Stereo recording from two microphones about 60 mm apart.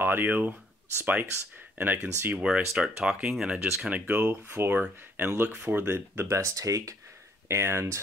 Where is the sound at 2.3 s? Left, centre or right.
Centre.